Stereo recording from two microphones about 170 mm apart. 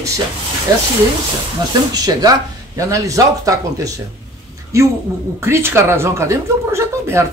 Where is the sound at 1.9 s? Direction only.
25° right (ahead or behind).